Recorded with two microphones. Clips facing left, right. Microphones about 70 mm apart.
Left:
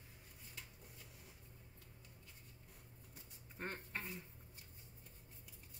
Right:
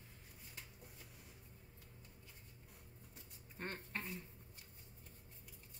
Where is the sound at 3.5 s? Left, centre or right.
Centre.